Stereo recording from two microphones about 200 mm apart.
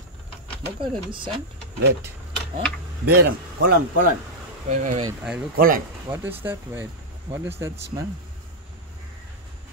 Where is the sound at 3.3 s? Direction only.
45° right (ahead or behind).